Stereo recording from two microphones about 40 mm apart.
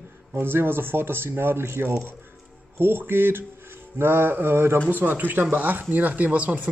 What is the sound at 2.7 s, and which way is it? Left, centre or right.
Speech, right.